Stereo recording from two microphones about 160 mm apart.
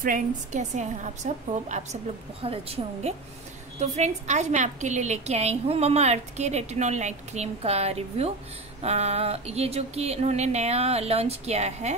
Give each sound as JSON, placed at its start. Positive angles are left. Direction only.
{"t": 0.0, "sound": "a woman's voice", "side_deg": -55}
{"t": 2.4, "sound": "a woman's voice", "side_deg": -35}